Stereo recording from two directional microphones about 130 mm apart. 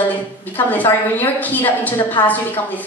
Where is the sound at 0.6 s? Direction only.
15° left (ahead or behind).